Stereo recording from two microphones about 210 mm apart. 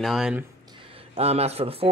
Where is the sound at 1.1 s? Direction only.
30° right (ahead or behind).